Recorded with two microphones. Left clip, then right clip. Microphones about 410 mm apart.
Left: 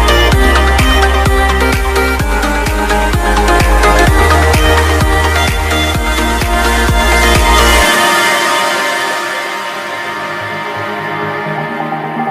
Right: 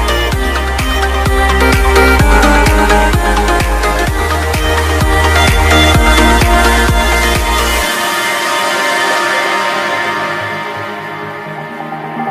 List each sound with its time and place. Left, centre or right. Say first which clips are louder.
0.0 s music: left 4 dB; left
0.4 s music: left 5 dB; left
1.9 s music: right 4 dB; right
3.8 s music: left 5 dB; left
5.7 s music: right 5 dB; right
7.2 s music: left 3 dB; left
7.4 s music: left 5 dB; left